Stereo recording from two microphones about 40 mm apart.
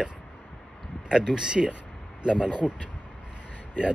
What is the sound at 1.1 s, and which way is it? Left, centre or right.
Speech, right.